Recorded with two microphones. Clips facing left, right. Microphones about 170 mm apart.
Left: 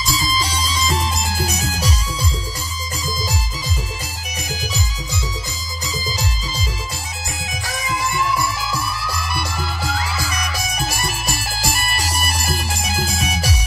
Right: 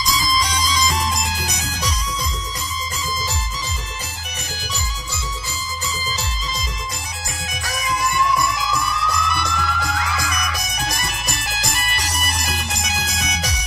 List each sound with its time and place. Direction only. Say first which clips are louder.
0.1 s music: even; 30° left (ahead or behind)
8.2 s music: right 1 dB; 30° left (ahead or behind)
11.3 s music: left 2 dB; 5° left (ahead or behind)
12.2 s music: left 2 dB; 30° left (ahead or behind)